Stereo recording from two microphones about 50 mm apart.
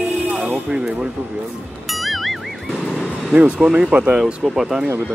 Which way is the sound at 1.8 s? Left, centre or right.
Centre.